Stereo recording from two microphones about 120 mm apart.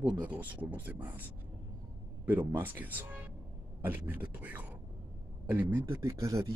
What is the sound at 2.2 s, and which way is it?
Speech, 15° right (ahead or behind).